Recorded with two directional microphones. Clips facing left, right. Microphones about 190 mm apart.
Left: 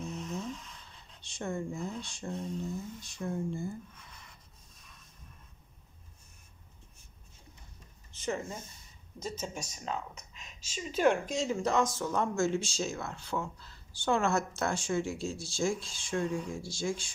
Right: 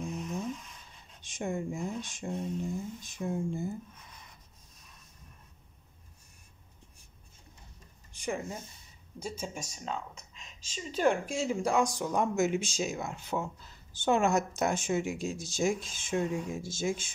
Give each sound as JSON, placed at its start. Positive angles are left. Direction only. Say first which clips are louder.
{"t": 0.0, "sound": "a sound", "louder": "right 2 dB", "side_deg": -15}
{"t": 1.2, "sound": "speech", "louder": "right 2 dB", "side_deg": -15}
{"t": 8.1, "sound": "speech", "louder": "even", "side_deg": -10}
{"t": 11.1, "sound": "speech", "louder": "even", "side_deg": -10}